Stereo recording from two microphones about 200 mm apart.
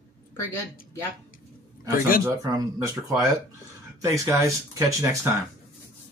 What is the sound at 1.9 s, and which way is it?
Speech, 45° left (ahead or behind).